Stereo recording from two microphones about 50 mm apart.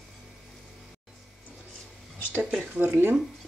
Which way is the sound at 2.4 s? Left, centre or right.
Centre.